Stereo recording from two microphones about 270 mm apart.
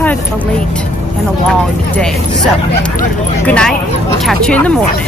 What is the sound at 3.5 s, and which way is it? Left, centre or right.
Speech, centre.